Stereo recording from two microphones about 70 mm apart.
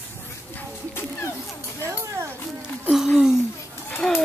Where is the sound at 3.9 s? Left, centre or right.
Centre.